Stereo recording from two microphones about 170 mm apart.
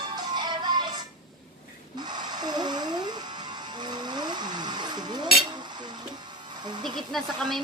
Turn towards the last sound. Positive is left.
turn(degrees=0)  # may be behind; listen again after turning